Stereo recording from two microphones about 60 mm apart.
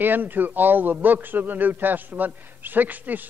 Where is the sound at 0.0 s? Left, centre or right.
Right.